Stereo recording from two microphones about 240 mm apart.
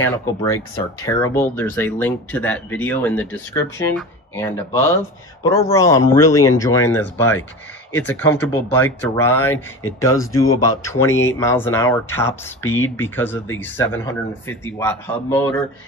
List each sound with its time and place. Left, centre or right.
0.0 s speech: centre
12.6 s speech: left
12.9 s speech: centre